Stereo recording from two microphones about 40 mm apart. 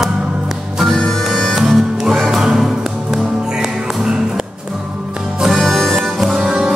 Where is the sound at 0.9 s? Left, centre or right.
Centre.